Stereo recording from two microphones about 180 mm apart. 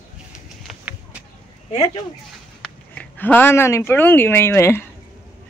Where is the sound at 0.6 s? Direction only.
10° right (ahead or behind).